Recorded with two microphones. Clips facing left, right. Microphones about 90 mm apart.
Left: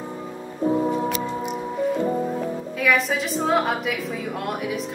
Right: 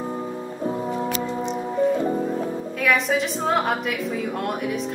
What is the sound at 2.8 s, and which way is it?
Speech, centre (ahead or behind).